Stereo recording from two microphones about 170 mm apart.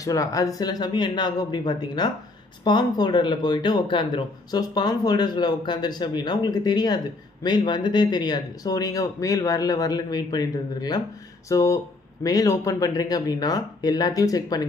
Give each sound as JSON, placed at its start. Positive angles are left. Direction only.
{"t": 0.0, "sound": "speech", "side_deg": 20}